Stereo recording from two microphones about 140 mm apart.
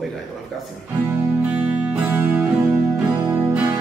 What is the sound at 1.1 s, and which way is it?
Music, 10° right (ahead or behind).